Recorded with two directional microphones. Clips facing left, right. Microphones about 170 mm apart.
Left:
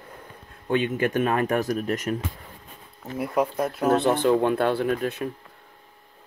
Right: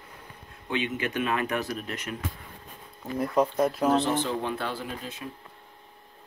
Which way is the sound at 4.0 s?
55° left (ahead or behind).